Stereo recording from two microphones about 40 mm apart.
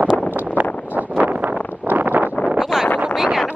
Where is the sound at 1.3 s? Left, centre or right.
Right.